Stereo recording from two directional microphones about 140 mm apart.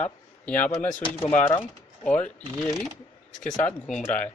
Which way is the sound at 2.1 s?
10° left (ahead or behind).